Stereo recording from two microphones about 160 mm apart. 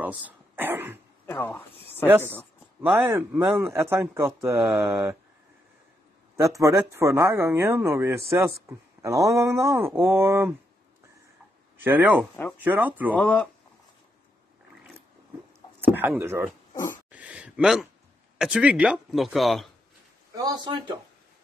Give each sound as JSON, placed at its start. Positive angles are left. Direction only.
{"t": 0.0, "sound": "speech", "side_deg": -10}
{"t": 1.2, "sound": "speech", "side_deg": 10}
{"t": 1.7, "sound": "a sound", "side_deg": -35}
{"t": 2.8, "sound": "speech", "side_deg": -10}
{"t": 6.3, "sound": "speech", "side_deg": -20}
{"t": 11.8, "sound": "speech", "side_deg": -10}
{"t": 13.1, "sound": "speech", "side_deg": 10}
{"t": 15.8, "sound": "speech", "side_deg": -10}
{"t": 20.3, "sound": "speech", "side_deg": -25}